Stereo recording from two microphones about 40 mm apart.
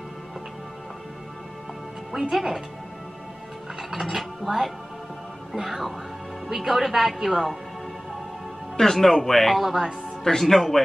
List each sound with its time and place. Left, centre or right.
2.1 s a woman's voice: centre
3.9 s a woman's voice: centre
8.7 s speech: centre
10.2 s speech: centre